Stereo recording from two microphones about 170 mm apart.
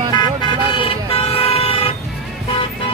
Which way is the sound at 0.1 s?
25° left (ahead or behind).